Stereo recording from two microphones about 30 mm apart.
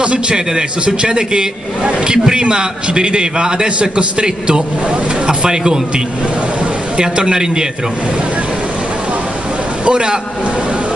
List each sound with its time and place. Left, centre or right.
0.0 s a man's voice: right
7.0 s a man's voice: right
9.8 s a man's voice: right